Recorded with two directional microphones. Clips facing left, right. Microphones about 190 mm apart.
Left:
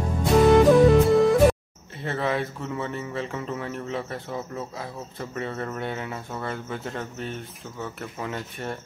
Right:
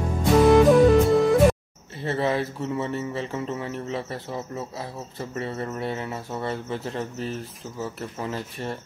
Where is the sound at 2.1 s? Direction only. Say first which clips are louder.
Right 2 dB; 30° right (ahead or behind).